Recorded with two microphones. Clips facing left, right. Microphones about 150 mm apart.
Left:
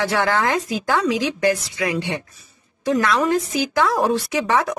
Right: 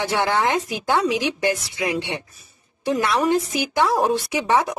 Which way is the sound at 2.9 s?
25° right (ahead or behind).